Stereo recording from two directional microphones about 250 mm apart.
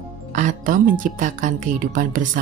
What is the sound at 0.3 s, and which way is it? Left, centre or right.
Music, right.